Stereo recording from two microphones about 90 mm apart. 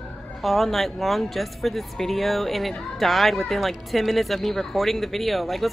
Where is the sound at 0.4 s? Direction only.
Centre (ahead or behind).